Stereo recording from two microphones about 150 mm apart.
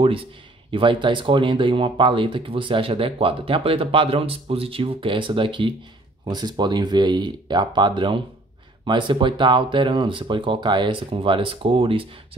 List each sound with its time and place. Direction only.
0.0 s speech: 35° right (ahead or behind)